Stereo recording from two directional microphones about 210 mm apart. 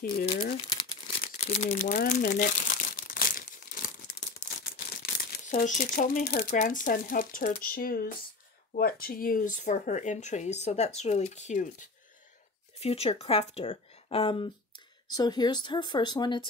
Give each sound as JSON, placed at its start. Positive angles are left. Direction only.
{"t": 0.6, "sound": "crumpling", "side_deg": 20}
{"t": 4.4, "sound": "speech", "side_deg": 40}